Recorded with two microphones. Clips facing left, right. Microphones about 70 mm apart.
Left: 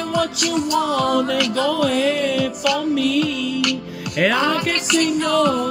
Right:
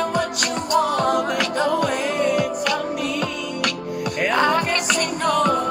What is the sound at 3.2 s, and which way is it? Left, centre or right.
Music, right.